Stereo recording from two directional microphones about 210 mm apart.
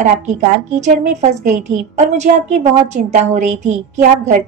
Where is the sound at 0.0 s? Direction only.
35° right (ahead or behind).